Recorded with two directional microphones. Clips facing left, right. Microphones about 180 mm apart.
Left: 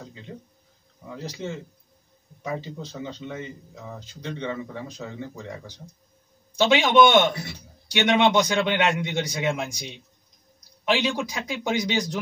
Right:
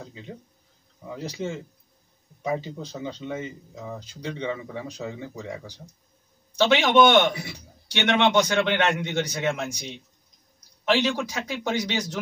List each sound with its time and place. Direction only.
1.1 s speech: 10° right (ahead or behind)
6.6 s a man's voice: 15° left (ahead or behind)